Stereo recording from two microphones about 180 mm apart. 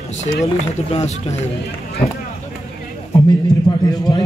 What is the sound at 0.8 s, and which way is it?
Speech, 35° left (ahead or behind).